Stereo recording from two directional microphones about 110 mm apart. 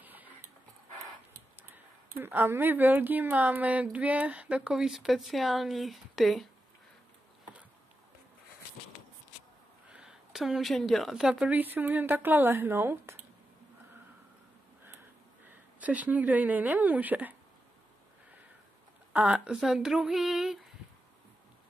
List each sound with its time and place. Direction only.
0.0 s dog: 15° right (ahead or behind)
2.1 s speech: 20° right (ahead or behind); by 6.5 s centre (ahead or behind)
9.8 s speech: 5° right (ahead or behind); by 13.1 s 25° right (ahead or behind)
15.4 s speech: 15° right (ahead or behind)
19.1 s speech: 10° right (ahead or behind)